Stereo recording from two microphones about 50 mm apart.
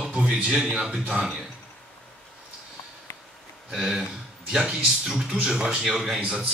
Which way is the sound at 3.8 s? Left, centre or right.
Centre.